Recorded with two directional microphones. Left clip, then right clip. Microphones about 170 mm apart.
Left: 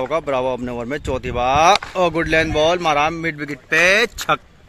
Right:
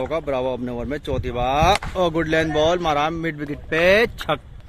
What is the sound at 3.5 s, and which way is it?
Speech, 20° right (ahead or behind).